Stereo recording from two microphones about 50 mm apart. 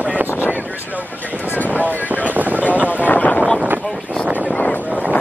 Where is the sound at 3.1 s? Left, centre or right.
Left.